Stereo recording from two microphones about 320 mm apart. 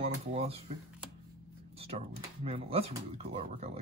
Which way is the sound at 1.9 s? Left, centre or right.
Right.